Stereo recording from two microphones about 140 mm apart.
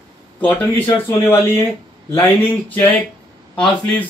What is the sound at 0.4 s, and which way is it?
Speech, 15° left (ahead or behind).